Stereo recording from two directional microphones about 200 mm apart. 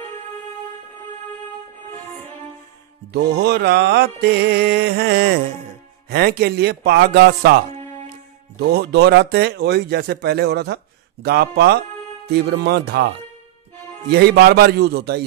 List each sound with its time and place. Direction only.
3.1 s speech: 55° right (ahead or behind)
8.5 s speech: 55° right (ahead or behind)
14.1 s speech: 55° right (ahead or behind)